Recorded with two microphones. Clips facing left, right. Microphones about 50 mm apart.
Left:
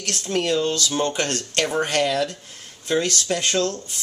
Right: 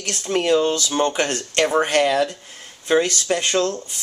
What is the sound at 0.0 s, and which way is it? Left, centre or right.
Speech, centre.